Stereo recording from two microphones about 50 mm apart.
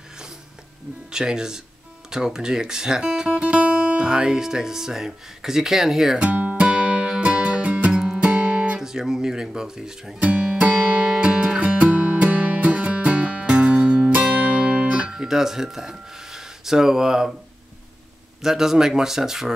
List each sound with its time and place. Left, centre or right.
1.1 s speech: centre
6.1 s music: right
8.7 s speech: centre
10.2 s music: right
15.0 s a sound: centre
18.4 s speech: centre